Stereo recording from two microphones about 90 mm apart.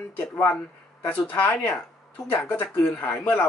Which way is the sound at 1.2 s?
20° left (ahead or behind).